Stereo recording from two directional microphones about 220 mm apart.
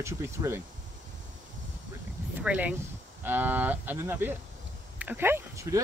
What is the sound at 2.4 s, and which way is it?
Speech, 5° right (ahead or behind).